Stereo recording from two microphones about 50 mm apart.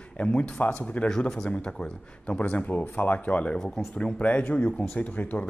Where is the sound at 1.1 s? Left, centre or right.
Centre.